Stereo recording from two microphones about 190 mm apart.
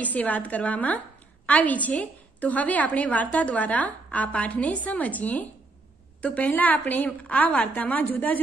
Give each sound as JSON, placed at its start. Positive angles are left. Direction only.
{"t": 0.0, "sound": "a woman's voice", "side_deg": 10}